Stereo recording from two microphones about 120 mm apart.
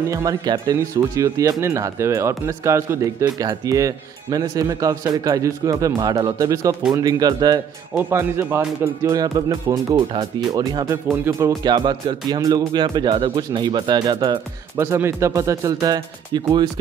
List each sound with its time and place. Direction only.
0.1 s speech: 30° right (ahead or behind)
7.9 s speech: 20° right (ahead or behind)
11.6 s speech: 40° right (ahead or behind)
14.8 s speech: 25° right (ahead or behind)